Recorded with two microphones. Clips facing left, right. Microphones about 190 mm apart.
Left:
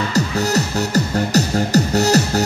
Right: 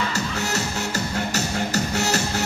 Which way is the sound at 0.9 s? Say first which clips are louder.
Left 11 dB; 40° left (ahead or behind).